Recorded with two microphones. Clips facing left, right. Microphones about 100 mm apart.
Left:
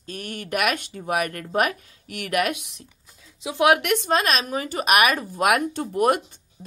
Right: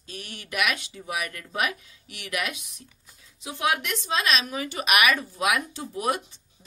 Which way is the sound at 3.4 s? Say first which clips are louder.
Left 8 dB; 90° left.